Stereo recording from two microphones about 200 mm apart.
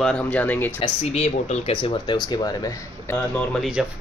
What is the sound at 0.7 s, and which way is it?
Speech, 30° left (ahead or behind).